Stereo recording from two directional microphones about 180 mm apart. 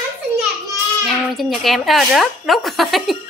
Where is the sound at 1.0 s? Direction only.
Centre (ahead or behind).